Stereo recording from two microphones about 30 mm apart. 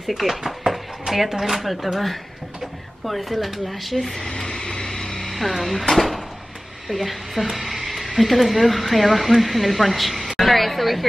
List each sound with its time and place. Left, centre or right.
0.0 s speech: centre
0.7 s a sound: centre
1.4 s a woman's voice: centre
3.1 s a woman's voice: centre
4.5 s vehicle: left
5.3 s a woman's voice: centre